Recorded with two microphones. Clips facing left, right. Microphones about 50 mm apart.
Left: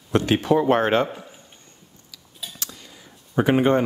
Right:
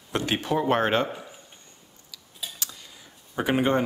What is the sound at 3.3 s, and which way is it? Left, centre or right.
Speech, left.